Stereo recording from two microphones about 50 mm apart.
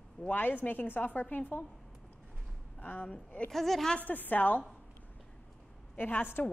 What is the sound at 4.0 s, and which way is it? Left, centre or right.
Speech, left.